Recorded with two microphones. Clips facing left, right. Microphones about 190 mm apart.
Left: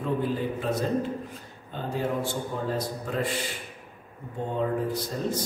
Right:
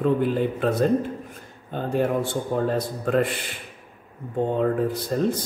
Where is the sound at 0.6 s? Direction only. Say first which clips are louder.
Right 7 dB; 55° right (ahead or behind).